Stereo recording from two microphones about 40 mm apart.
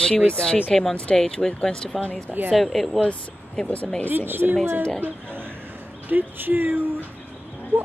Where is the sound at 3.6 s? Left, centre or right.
Centre.